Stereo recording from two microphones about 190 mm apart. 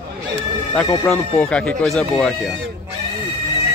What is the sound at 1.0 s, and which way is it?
Speech, 5° left (ahead or behind).